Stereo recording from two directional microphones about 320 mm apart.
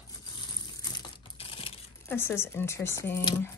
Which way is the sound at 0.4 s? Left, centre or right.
Centre.